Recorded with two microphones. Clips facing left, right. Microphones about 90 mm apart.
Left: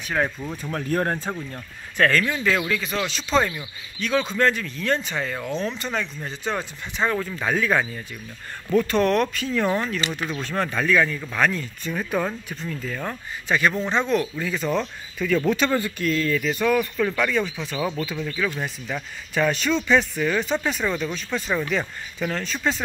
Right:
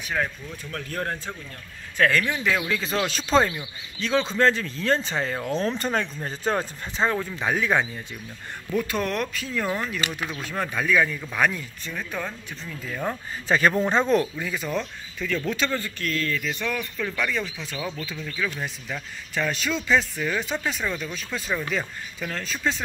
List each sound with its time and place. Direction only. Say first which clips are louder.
0.7 s speech: left 6 dB; 40° left (ahead or behind)
2.0 s speech: left 1 dB; 10° right (ahead or behind)
2.7 s speech: even; 30° right (ahead or behind)
3.4 s speech: even; 20° right (ahead or behind)
5.6 s speech: right 4 dB; 35° right (ahead or behind)
7.0 s speech: left 1 dB; 20° right (ahead or behind)
8.7 s speech: left 6 dB; 5° right (ahead or behind)
11.9 s speech: left 7 dB; 10° left (ahead or behind)
12.6 s speech: even; 5° right (ahead or behind)
13.5 s speech: right 1 dB; 35° right (ahead or behind)
14.4 s speech: left 4 dB; 5° right (ahead or behind)
14.8 s speech: left 4 dB; 5° left (ahead or behind)